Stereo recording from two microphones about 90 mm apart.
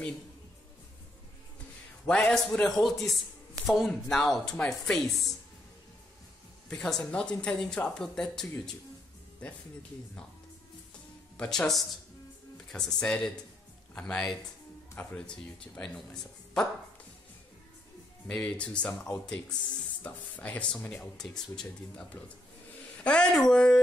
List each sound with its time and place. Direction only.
2.0 s a woman's voice: 10° left (ahead or behind)
6.7 s a woman's voice: 10° left (ahead or behind)
11.3 s a woman's voice: 5° left (ahead or behind)
18.3 s a woman's voice: 10° left (ahead or behind)
20.0 s a woman's voice: 20° left (ahead or behind)